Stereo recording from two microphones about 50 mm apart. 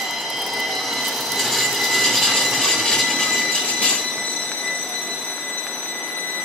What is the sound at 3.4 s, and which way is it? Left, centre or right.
Train, centre.